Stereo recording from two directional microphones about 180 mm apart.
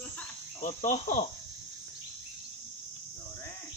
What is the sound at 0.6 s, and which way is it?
Speech, 45° left (ahead or behind).